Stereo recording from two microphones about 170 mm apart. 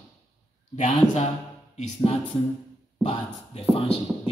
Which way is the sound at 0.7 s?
45° left (ahead or behind).